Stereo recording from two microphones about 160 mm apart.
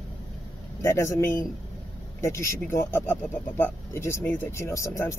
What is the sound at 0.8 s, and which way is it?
Speech, 15° left (ahead or behind).